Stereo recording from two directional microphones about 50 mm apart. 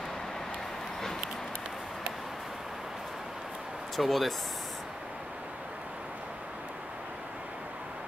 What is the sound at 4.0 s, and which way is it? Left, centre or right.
Speech, centre.